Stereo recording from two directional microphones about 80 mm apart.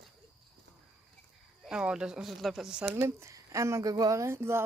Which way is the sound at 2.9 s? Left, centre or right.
Right.